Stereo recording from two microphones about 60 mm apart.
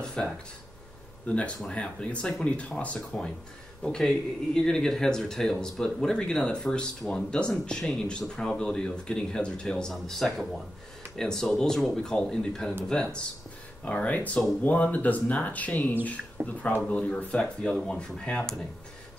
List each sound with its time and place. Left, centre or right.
0.0 s a sound: centre
1.2 s speech: left
16.4 s speech: right
16.9 s speech: left